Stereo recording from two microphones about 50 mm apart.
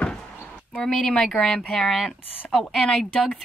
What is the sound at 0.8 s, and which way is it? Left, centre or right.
Speech, centre.